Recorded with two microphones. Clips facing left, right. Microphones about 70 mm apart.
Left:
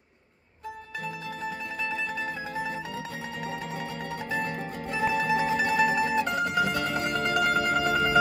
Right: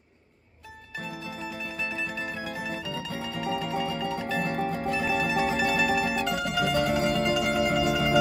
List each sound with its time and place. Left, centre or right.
1.4 s music: left
3.6 s music: right
4.4 s music: right
4.8 s music: left
6.7 s music: right
7.1 s music: left